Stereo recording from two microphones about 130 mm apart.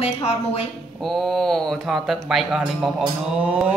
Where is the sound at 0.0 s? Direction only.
50° left (ahead or behind).